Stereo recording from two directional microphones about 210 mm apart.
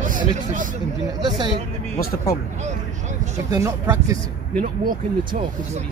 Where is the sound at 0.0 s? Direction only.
40° right (ahead or behind).